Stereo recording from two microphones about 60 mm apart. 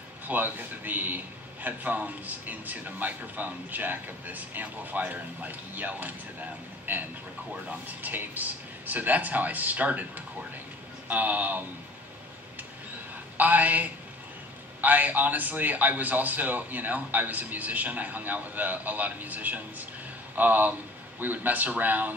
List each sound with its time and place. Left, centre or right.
0.3 s a man's voice: right
13.4 s a man's voice: right